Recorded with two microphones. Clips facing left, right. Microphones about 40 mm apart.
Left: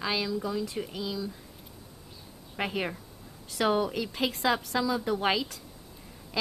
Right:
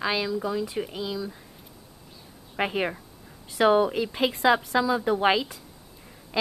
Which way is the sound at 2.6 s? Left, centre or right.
Centre.